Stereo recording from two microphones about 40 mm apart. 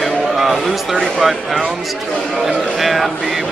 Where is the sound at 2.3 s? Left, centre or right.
Centre.